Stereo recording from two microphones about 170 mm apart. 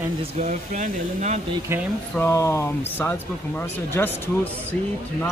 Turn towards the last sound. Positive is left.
turn(degrees=10)  # may be behind; listen again after turning